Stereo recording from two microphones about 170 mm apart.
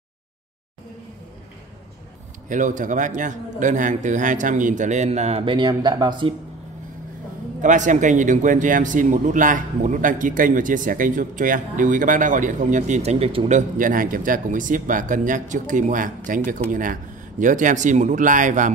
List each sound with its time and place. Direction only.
2.5 s a man's voice: 50° right (ahead or behind); by 6.3 s 25° right (ahead or behind)
7.6 s a man's voice: 45° right (ahead or behind)
13.6 s a man's voice: 50° right (ahead or behind)